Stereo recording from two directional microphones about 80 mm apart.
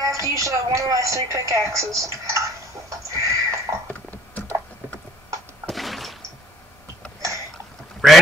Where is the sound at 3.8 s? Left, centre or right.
Centre.